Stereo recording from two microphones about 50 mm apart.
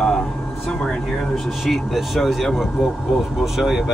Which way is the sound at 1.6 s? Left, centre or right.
Centre.